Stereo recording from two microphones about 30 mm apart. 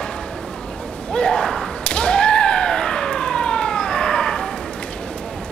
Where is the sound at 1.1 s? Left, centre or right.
Left.